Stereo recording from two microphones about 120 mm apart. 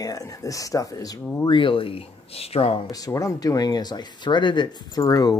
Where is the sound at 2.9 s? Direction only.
30° left (ahead or behind).